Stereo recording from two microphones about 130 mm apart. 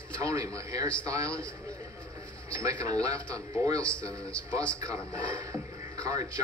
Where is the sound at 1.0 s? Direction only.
25° right (ahead or behind).